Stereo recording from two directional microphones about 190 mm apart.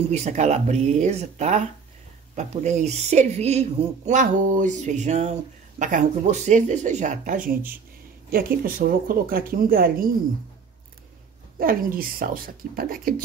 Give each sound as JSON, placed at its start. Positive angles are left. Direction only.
{"t": 0.1, "sound": "speech", "side_deg": -35}
{"t": 11.6, "sound": "speech", "side_deg": -50}